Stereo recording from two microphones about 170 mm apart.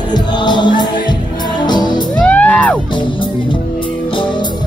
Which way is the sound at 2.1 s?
5° left (ahead or behind).